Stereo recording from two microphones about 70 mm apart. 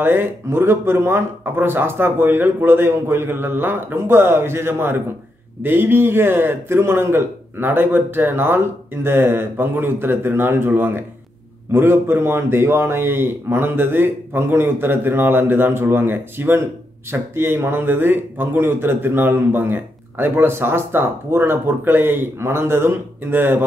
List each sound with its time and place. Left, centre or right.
0.0 s speech: right